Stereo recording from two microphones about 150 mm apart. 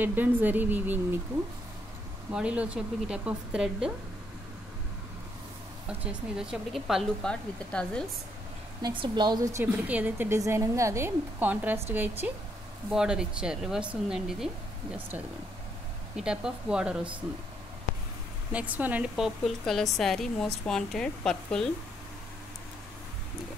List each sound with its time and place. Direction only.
0.0 s a woman's voice: 10° right (ahead or behind)
2.3 s a woman's voice: 10° right (ahead or behind)
5.9 s speech: 5° right (ahead or behind)
8.8 s a woman's voice: 30° right (ahead or behind); by 17.0 s 5° right (ahead or behind)
18.5 s speech: 10° right (ahead or behind)